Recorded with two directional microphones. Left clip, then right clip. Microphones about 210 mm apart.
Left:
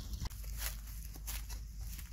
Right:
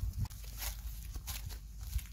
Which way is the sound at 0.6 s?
35° left (ahead or behind).